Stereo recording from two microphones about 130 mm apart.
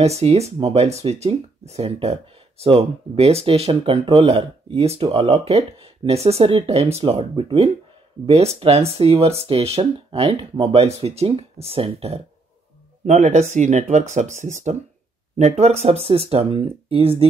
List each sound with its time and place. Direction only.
0.2 s speech: 55° right (ahead or behind)
13.0 s speech: 60° right (ahead or behind)
15.3 s speech: 55° right (ahead or behind)